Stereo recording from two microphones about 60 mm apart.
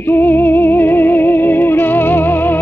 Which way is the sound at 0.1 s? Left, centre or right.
Left.